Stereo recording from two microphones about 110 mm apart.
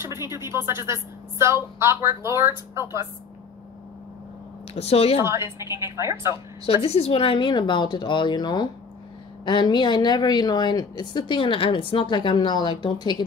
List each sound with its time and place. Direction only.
0.3 s a woman's voice: 25° right (ahead or behind)
4.7 s speech: 70° left (ahead or behind)
5.2 s a woman's voice: 25° right (ahead or behind)
6.6 s a woman's voice: 65° left (ahead or behind); by 13.2 s 45° left (ahead or behind)